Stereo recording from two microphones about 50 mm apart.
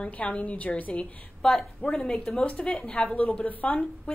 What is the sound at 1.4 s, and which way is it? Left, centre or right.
A woman's voice, centre.